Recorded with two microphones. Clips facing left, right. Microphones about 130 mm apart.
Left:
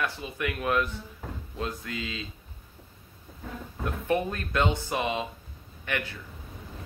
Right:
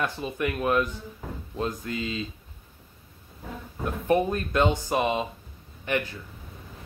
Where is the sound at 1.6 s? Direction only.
30° right (ahead or behind).